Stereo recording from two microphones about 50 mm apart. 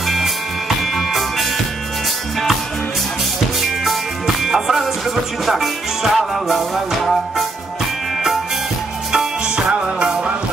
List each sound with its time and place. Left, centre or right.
0.0 s music: centre
3.8 s music: centre
9.1 s music: centre